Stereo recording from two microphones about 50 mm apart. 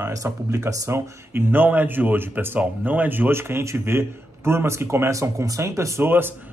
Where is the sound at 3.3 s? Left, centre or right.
Right.